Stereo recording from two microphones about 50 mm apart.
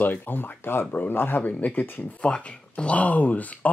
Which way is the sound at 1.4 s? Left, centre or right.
Left.